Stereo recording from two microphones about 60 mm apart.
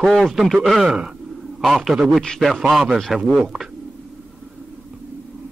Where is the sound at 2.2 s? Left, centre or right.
Centre.